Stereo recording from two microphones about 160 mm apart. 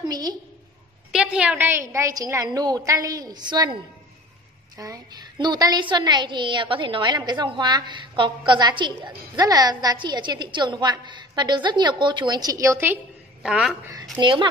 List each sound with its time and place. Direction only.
0.0 s a woman's voice: 25° right (ahead or behind)
1.1 s a woman's voice: 5° right (ahead or behind); by 3.7 s 25° right (ahead or behind)
4.7 s a woman's voice: 20° right (ahead or behind); by 13.7 s 5° right (ahead or behind)
14.1 s a woman's voice: 30° right (ahead or behind)